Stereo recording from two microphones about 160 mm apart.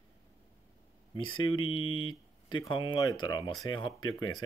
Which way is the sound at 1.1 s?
30° left (ahead or behind).